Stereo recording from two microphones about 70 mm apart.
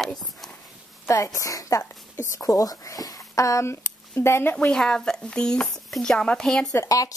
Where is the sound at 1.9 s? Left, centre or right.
Left.